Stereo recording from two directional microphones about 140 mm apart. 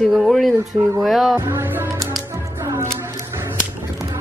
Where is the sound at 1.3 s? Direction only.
15° right (ahead or behind).